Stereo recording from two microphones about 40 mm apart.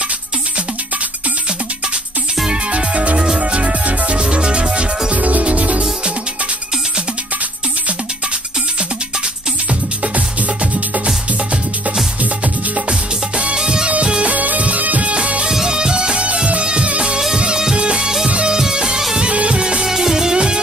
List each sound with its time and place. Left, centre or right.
2.7 s music: right
5.1 s music: right
13.4 s music: right
14.3 s music: right
15.5 s music: centre
19.8 s music: centre